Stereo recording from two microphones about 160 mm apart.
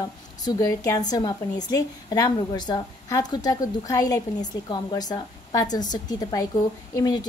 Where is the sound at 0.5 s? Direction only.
20° left (ahead or behind).